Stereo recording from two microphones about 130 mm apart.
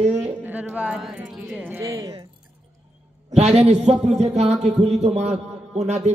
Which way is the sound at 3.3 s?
55° right (ahead or behind).